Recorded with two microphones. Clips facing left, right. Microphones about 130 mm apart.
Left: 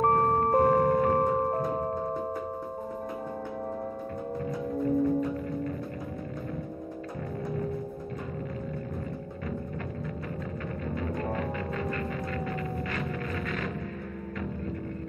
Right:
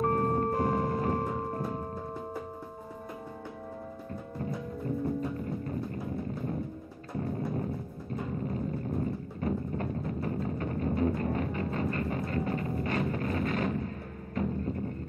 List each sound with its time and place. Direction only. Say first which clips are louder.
0.0 s music: left 4 dB; 50° left (ahead or behind)
10.2 s music: right 3 dB; 35° right (ahead or behind)